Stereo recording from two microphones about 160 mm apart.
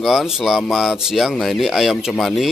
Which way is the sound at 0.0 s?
Centre (ahead or behind).